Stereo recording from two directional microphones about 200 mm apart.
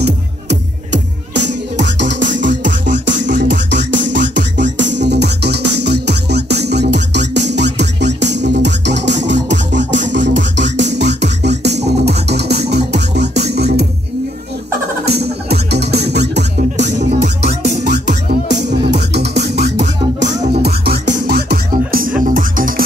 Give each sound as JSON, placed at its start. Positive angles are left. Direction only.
{"t": 0.0, "sound": "music", "side_deg": -60}
{"t": 15.0, "sound": "music", "side_deg": -55}
{"t": 17.8, "sound": "music", "side_deg": -60}